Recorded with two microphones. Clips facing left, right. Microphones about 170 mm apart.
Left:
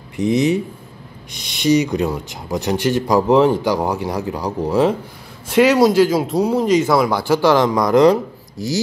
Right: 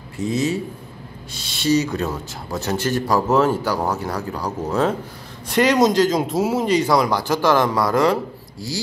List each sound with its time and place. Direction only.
0.2 s speech: 20° left (ahead or behind); by 6.7 s 5° right (ahead or behind)
6.7 s speech: 10° left (ahead or behind)